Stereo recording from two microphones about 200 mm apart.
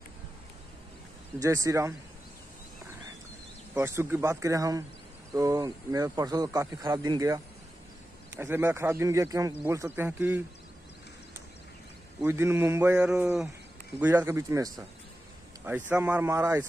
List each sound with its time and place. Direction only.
1.4 s speech: 15° right (ahead or behind)
3.7 s speech: 10° right (ahead or behind)
12.2 s speech: 10° right (ahead or behind)